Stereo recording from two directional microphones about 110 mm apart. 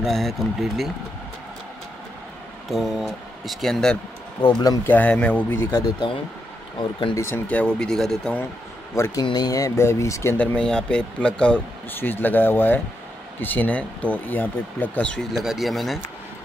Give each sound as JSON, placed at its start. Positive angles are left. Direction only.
{"t": 0.0, "sound": "speech", "side_deg": 0}
{"t": 2.7, "sound": "speech", "side_deg": 0}
{"t": 4.4, "sound": "speech", "side_deg": 40}
{"t": 4.8, "sound": "speech", "side_deg": 15}
{"t": 6.0, "sound": "speech", "side_deg": 45}
{"t": 7.4, "sound": "speech", "side_deg": 10}
{"t": 8.9, "sound": "speech", "side_deg": 25}
{"t": 9.2, "sound": "speech", "side_deg": 40}
{"t": 10.3, "sound": "speech", "side_deg": 10}
{"t": 15.3, "sound": "speech", "side_deg": 0}